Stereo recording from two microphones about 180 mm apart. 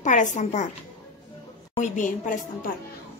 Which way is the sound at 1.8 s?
45° left (ahead or behind).